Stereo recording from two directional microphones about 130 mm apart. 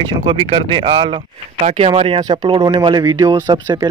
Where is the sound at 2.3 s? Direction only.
30° right (ahead or behind).